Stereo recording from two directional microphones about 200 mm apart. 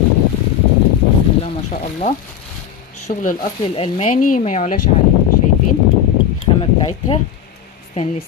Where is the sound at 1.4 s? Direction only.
35° left (ahead or behind).